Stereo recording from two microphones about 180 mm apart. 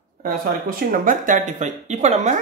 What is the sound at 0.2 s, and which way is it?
Speech, 50° right (ahead or behind).